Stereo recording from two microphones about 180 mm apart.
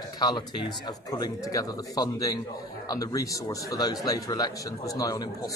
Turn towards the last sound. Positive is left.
turn(degrees=20)  # may be behind; listen again after turning